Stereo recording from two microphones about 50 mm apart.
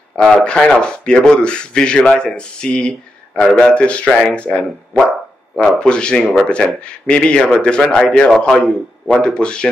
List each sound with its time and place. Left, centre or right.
0.1 s a man's voice: centre
3.7 s a man's voice: left
5.8 s a man's voice: centre